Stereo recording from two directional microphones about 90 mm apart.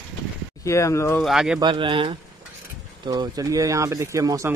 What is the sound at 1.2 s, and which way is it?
Speech, 5° right (ahead or behind).